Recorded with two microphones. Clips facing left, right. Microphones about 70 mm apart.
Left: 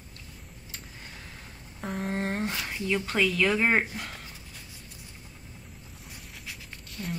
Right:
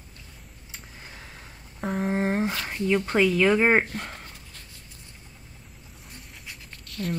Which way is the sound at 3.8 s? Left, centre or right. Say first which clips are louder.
Right 2 dB; centre.